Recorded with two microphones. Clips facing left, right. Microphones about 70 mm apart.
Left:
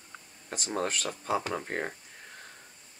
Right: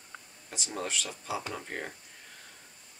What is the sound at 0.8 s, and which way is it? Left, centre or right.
Speech, left.